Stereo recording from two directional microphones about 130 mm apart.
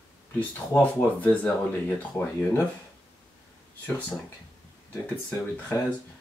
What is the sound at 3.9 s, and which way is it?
Speech, 10° left (ahead or behind).